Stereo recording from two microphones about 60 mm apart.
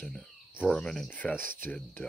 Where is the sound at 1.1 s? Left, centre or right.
Left.